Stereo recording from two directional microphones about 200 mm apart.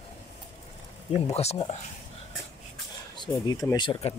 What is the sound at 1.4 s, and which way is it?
Speech, 30° left (ahead or behind).